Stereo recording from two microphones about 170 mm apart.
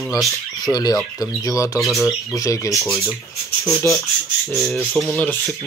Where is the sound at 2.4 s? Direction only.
20° left (ahead or behind).